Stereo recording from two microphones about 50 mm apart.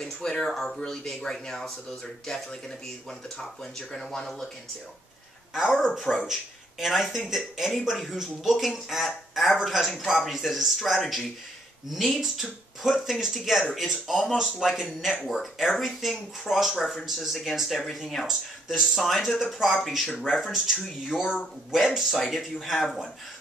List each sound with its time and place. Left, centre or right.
0.0 s speech: centre
3.9 s speech: centre
5.5 s speech: centre